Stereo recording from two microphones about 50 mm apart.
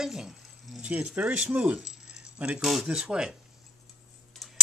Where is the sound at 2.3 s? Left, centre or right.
Right.